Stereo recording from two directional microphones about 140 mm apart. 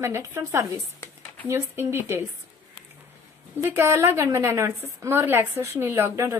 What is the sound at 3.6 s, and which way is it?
A woman's voice, 15° right (ahead or behind).